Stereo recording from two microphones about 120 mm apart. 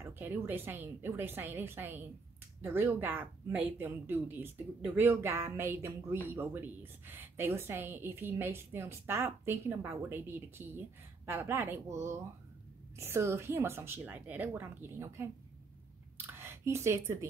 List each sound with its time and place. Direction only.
0.0 s a woman's voice: 15° right (ahead or behind)
16.3 s speech: 20° right (ahead or behind)